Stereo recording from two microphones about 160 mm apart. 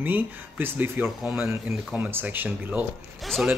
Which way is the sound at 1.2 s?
Centre (ahead or behind).